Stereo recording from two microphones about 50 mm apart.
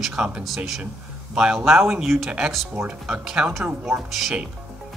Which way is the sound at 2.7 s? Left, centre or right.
Centre.